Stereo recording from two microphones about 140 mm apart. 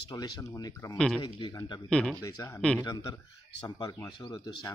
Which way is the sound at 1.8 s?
5° left (ahead or behind).